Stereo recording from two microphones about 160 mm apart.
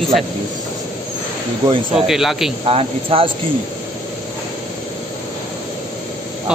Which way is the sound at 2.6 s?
35° right (ahead or behind).